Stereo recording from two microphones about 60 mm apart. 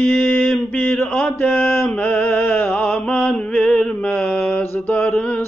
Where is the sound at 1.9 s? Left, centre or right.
Centre.